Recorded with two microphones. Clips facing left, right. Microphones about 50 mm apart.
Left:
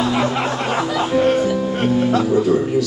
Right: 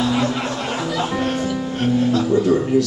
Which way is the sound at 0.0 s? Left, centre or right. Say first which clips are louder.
Left 2 dB; left.